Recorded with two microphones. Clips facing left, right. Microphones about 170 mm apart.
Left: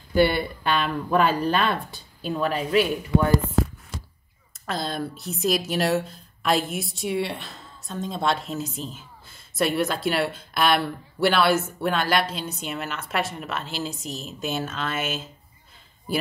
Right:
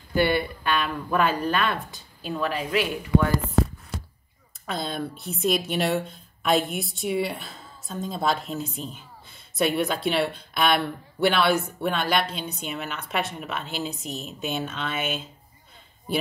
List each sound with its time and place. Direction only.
0.7 s speech: 30° left (ahead or behind)
4.6 s speech: centre (ahead or behind)